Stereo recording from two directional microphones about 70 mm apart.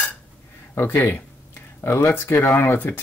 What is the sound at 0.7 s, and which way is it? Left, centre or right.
Speech, left.